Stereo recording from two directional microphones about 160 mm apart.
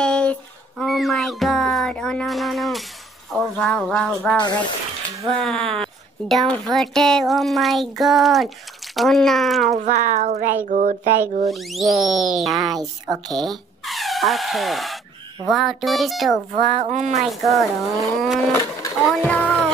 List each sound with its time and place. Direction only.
0.0 s music: 5° left (ahead or behind)
3.3 s speech: 5° left (ahead or behind)
9.8 s a child's voice: 50° right (ahead or behind)
11.4 s speech: centre (ahead or behind)
16.7 s a child's voice: 45° right (ahead or behind)
17.2 s speech: centre (ahead or behind)
18.5 s a sound: 20° left (ahead or behind)
19.0 s a sound: 5° left (ahead or behind)